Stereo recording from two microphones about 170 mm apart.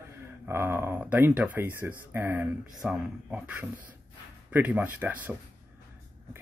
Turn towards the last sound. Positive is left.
turn(degrees=-10)  # may be behind; listen again after turning